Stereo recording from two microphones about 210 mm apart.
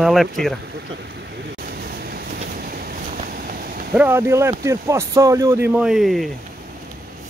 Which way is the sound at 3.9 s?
10° right (ahead or behind).